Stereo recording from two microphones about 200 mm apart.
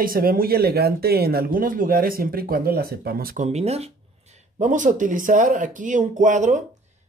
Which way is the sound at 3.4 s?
30° right (ahead or behind).